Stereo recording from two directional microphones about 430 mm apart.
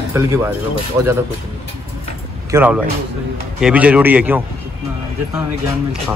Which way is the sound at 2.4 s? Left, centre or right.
Centre.